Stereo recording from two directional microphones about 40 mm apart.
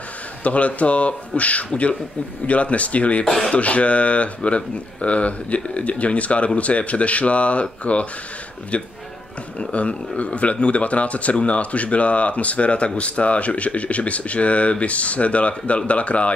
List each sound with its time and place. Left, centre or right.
0.4 s speech: left
3.3 s speech: centre
3.5 s speech: left